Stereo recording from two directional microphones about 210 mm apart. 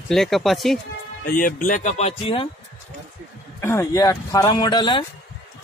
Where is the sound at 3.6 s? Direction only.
15° left (ahead or behind).